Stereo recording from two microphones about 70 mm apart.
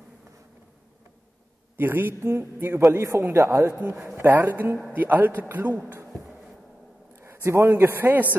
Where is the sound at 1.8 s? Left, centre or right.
Right.